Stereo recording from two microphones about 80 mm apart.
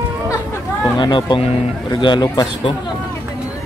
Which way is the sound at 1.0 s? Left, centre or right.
Left.